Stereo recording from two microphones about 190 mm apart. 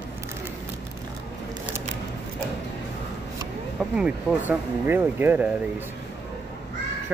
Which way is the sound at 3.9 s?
5° right (ahead or behind).